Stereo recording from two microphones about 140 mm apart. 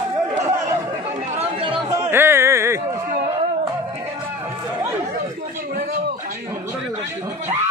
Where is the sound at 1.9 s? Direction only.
20° right (ahead or behind).